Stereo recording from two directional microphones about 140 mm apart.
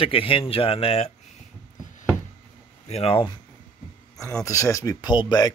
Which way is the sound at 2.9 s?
45° left (ahead or behind).